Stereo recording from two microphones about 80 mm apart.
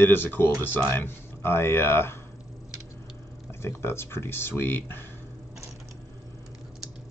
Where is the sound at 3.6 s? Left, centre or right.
Left.